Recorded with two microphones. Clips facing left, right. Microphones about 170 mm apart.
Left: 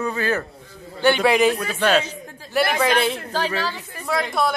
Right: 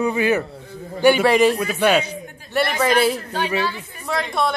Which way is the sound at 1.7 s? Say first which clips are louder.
Right 2 dB; 10° right (ahead or behind).